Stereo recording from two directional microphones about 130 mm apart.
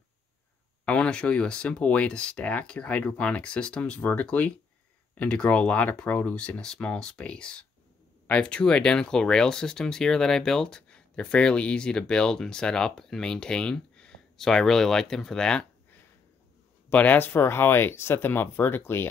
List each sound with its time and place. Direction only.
0.8 s speech: 10° left (ahead or behind)
16.9 s speech: 15° left (ahead or behind)